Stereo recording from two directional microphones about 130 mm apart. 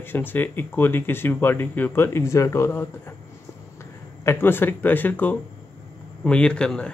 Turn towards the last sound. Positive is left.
turn(degrees=5)  # may be behind; listen again after turning